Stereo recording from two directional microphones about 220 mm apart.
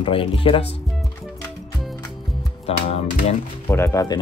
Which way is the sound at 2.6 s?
30° left (ahead or behind).